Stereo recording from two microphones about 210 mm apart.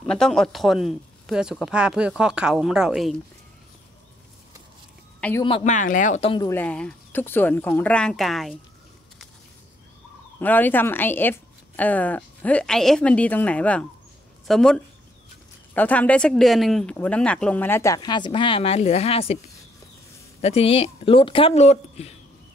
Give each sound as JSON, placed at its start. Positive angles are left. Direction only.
{"t": 0.0, "sound": "speech", "side_deg": 5}
{"t": 5.4, "sound": "speech", "side_deg": 30}
{"t": 6.3, "sound": "speech", "side_deg": 15}
{"t": 10.4, "sound": "speech", "side_deg": 10}
{"t": 20.4, "sound": "speech", "side_deg": 30}